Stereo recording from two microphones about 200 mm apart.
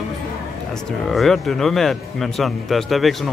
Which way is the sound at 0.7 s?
Centre (ahead or behind).